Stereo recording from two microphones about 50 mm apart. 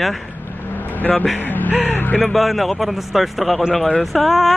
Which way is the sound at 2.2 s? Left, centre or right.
Centre.